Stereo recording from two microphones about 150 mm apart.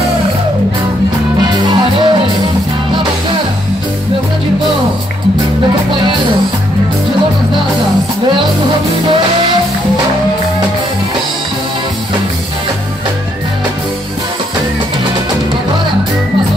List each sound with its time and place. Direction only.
1.4 s music: 30° right (ahead or behind)